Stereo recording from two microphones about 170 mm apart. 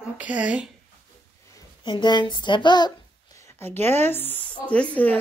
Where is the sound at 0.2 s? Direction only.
10° right (ahead or behind).